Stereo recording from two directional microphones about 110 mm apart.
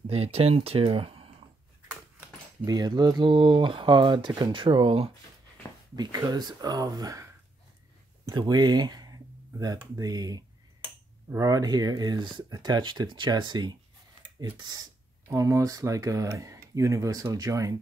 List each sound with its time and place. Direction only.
0.0 s speech: 65° right (ahead or behind)
2.6 s speech: 35° right (ahead or behind); by 5.1 s 60° right (ahead or behind)
5.9 s speech: 35° right (ahead or behind)
8.3 s speech: 40° right (ahead or behind)